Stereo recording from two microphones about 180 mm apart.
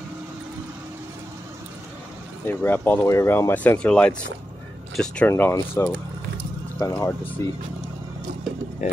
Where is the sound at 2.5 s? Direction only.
10° left (ahead or behind).